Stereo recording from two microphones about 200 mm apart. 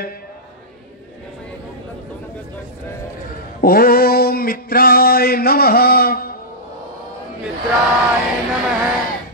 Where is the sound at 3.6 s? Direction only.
45° left (ahead or behind).